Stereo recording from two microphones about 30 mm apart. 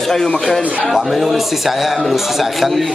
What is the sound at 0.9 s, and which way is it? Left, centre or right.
A man's voice, centre.